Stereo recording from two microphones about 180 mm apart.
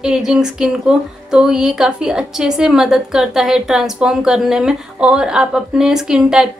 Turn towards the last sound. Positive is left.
turn(degrees=-5)  # may be behind; listen again after turning